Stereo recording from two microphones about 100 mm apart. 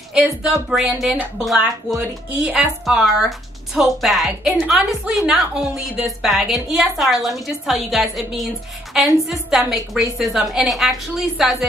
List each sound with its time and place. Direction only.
0.1 s a woman's voice: centre (ahead or behind)